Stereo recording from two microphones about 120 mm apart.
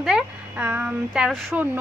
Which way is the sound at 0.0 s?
10° right (ahead or behind).